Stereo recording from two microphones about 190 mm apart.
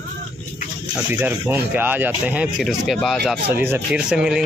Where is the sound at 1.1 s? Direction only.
10° right (ahead or behind).